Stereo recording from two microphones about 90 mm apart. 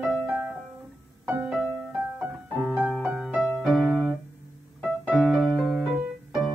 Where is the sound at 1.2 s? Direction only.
20° right (ahead or behind).